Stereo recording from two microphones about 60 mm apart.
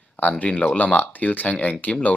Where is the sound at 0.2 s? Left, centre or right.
Left.